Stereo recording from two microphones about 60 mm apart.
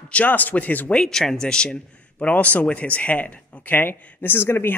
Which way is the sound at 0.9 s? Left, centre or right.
Centre.